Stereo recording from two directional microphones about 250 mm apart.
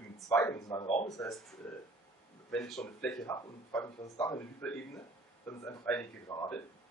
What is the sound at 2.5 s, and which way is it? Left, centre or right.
Speech, centre.